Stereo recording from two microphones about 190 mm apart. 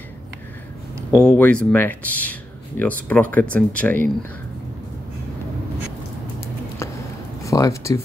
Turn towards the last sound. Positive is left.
turn(degrees=15)  # may be behind; listen again after turning